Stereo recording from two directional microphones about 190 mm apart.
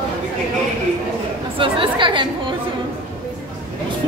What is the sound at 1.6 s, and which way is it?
Chatter, 25° right (ahead or behind).